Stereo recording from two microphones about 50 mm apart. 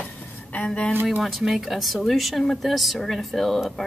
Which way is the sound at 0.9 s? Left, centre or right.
Right.